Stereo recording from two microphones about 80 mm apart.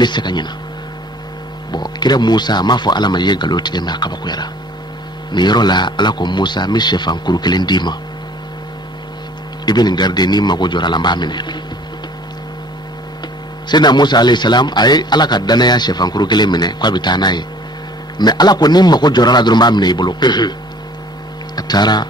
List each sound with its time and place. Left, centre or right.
0.0 s speech: left
1.7 s a man's voice: left
9.7 s a man's voice: left
13.7 s a man's voice: left
21.5 s a man's voice: left